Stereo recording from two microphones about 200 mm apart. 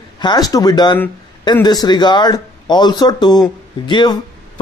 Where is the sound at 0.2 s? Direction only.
20° left (ahead or behind).